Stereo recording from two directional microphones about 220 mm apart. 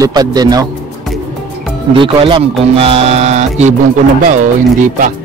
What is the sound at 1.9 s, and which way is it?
Speech, 25° right (ahead or behind).